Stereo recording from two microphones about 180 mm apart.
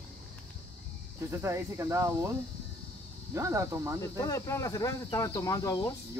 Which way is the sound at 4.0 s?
20° left (ahead or behind).